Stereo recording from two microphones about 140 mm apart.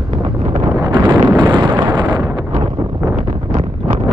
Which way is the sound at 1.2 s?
35° right (ahead or behind).